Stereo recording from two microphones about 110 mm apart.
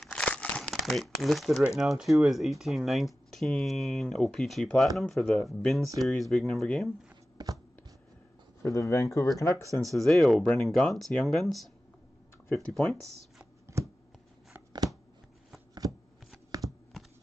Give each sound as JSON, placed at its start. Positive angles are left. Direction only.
{"t": 0.0, "sound": "crumpling", "side_deg": 10}
{"t": 1.8, "sound": "speech", "side_deg": 0}
{"t": 7.4, "sound": "a sound", "side_deg": -40}
{"t": 8.6, "sound": "speech", "side_deg": 30}
{"t": 9.8, "sound": "speech", "side_deg": 0}
{"t": 15.8, "sound": "shuffling cards", "side_deg": -35}